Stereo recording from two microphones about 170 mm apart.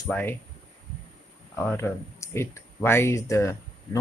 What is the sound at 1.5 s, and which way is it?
Speech, 15° left (ahead or behind).